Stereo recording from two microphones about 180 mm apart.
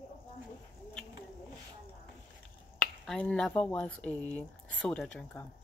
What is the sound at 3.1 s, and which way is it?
Speech, 5° left (ahead or behind).